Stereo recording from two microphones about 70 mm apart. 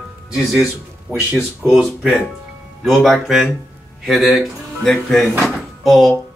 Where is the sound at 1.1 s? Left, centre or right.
Right.